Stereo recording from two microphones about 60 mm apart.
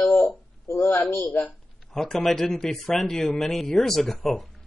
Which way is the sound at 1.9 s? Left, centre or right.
Centre.